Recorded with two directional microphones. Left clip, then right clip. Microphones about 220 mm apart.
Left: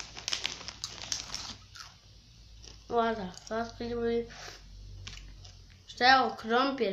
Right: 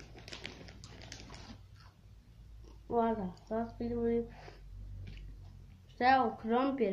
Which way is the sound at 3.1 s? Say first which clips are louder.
Left 3 dB; 45° left (ahead or behind).